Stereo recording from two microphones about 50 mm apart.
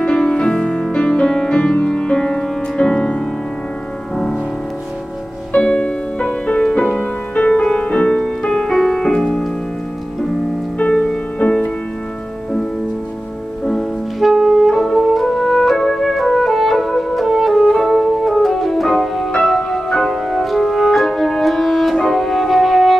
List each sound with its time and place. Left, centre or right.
0.0 s music: centre
5.5 s music: centre
10.8 s music: centre
14.2 s music: centre
19.4 s organ: centre
21.9 s music: centre